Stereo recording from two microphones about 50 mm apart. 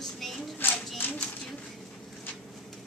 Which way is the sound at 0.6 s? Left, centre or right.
Left.